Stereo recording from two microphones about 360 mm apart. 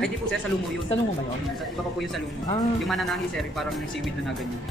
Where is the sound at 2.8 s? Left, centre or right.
Centre.